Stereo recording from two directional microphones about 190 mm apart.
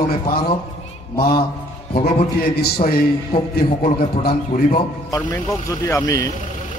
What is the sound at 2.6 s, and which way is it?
A man's voice, 55° left (ahead or behind).